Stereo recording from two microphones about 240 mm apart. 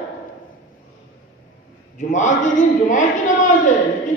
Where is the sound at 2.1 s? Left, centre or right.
Left.